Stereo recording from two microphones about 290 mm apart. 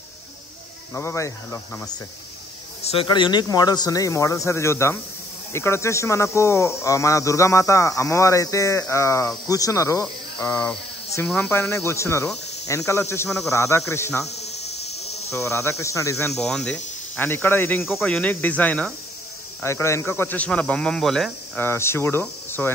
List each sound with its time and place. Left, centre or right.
0.9 s speech: centre
2.8 s speech: centre
14.3 s insect: left
15.3 s speech: centre